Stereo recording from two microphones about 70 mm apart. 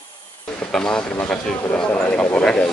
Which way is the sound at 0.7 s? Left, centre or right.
Centre.